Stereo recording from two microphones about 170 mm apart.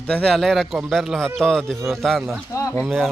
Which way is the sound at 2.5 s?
20° left (ahead or behind).